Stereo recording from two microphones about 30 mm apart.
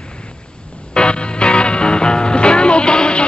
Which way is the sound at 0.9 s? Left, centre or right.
Left.